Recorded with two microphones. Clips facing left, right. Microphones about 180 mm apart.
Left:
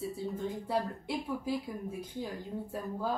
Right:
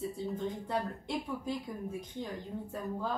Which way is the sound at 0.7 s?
5° left (ahead or behind).